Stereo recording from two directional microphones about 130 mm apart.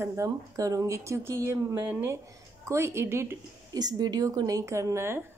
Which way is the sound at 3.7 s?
30° right (ahead or behind).